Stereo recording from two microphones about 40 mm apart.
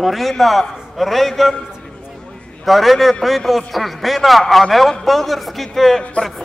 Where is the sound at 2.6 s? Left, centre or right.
Centre.